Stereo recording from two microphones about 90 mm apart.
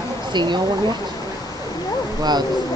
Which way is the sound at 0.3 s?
60° right (ahead or behind).